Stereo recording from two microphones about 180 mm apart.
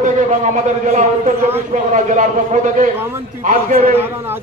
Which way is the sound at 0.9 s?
40° right (ahead or behind).